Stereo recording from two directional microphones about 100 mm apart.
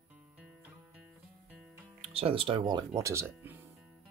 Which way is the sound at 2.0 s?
75° right (ahead or behind).